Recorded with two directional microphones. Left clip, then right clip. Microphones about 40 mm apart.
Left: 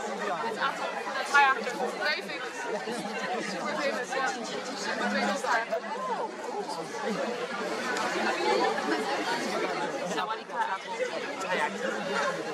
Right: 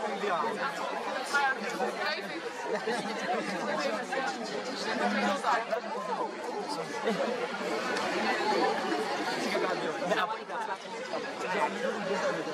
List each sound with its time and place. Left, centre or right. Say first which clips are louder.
1.3 s chatter: left 7 dB; left
5.1 s speech: left 2 dB; left
7.9 s speech: left 2 dB; centre
11.5 s chatter: left 1 dB; centre